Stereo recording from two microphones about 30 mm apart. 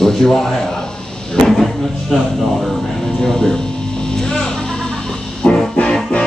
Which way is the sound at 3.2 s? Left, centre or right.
Centre.